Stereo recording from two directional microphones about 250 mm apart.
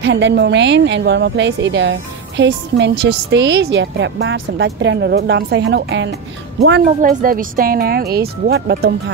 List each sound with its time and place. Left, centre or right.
0.0 s a woman's voice: right
6.8 s speech: right